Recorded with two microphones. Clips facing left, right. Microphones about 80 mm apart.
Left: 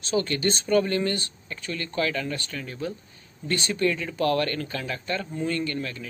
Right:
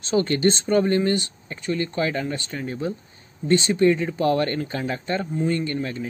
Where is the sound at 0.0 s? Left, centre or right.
Right.